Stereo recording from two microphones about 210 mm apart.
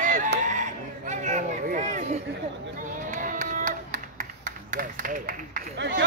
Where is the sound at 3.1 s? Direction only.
40° right (ahead or behind).